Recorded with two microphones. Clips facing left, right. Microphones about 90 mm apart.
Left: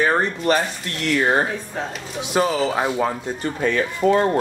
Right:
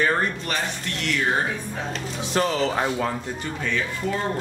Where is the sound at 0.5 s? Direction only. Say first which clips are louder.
Left 8 dB; 35° left (ahead or behind).